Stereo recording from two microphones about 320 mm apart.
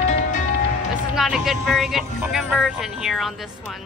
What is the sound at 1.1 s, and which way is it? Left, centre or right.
Music, centre.